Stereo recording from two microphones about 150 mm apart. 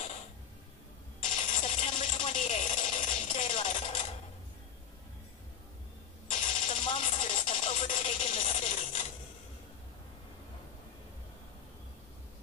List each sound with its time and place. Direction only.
1.2 s a sound: 55° left (ahead or behind)
3.2 s music: 40° left (ahead or behind)
6.3 s telephone: 50° left (ahead or behind)
6.9 s music: 45° left (ahead or behind)